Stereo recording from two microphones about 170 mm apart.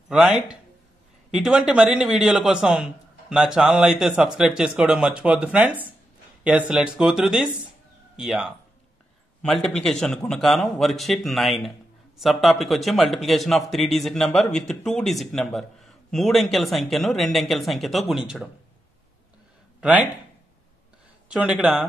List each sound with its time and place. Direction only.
0.1 s a man's voice: 5° right (ahead or behind)
21.3 s a man's voice: 5° right (ahead or behind)